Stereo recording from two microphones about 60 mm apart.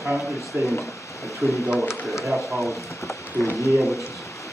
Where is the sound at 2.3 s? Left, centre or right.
Centre.